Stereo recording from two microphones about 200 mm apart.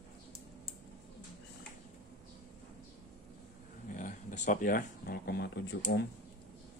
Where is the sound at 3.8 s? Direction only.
40° left (ahead or behind); by 6.1 s 60° left (ahead or behind).